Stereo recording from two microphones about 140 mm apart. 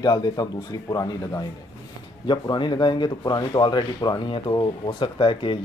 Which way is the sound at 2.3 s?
35° left (ahead or behind).